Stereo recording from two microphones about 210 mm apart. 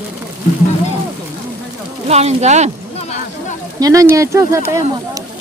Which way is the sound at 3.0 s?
30° left (ahead or behind).